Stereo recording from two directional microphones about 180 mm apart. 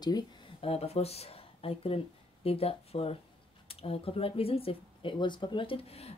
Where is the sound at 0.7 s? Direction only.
35° left (ahead or behind).